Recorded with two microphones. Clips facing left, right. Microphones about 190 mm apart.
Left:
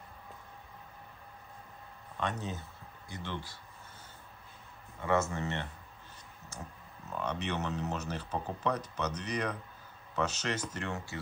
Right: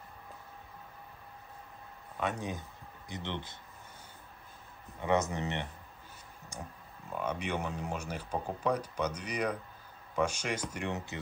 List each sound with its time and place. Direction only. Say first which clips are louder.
2.1 s speech: right 1 dB; 10° right (ahead or behind)
5.0 s speech: right 1 dB; 20° right (ahead or behind)